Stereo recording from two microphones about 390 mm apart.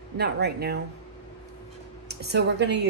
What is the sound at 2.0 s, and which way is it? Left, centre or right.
Speech, right.